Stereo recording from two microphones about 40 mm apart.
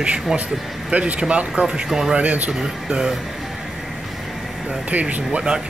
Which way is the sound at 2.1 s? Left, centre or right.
Right.